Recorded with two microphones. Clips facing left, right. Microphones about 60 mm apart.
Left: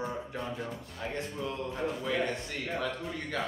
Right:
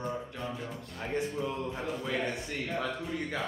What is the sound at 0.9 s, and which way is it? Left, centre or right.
Speech, centre.